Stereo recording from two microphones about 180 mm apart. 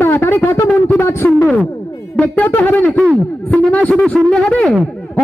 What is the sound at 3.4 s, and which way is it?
A man's voice, 10° left (ahead or behind).